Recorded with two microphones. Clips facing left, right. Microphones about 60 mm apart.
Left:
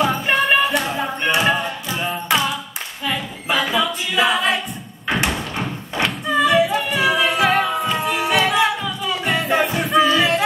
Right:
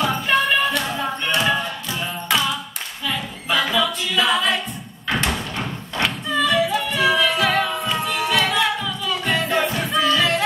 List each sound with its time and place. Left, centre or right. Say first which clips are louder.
0.0 s a sound: left 1 dB; centre
3.1 s a capella: left 2 dB; centre
5.0 s thump: left 2 dB; centre
6.3 s singing: left 4 dB; left
7.6 s music: left 3 dB; centre